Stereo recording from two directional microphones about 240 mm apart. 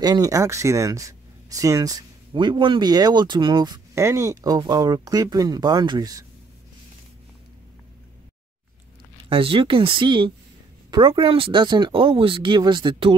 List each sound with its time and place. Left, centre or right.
0.0 s speech: centre
9.3 s speech: right